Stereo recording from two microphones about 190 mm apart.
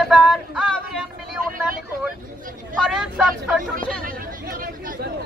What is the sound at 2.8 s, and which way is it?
Speech, centre (ahead or behind).